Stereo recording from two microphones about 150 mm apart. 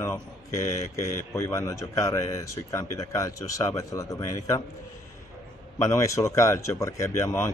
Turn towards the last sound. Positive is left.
turn(degrees=20)  # may be behind; listen again after turning